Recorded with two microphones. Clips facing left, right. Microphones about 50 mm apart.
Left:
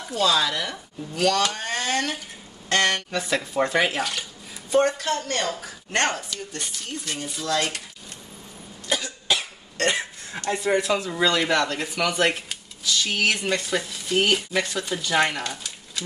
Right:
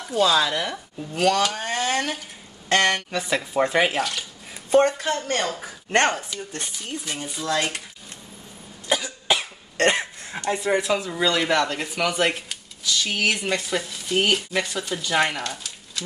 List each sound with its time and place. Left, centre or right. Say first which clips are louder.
0.1 s speech: right 2 dB; centre
4.6 s a woman's voice: right 2 dB; right
6.1 s speech: right 1 dB; centre
8.8 s cough: right 3 dB; centre
9.8 s cough: right 3 dB; right
10.3 s speech: even; centre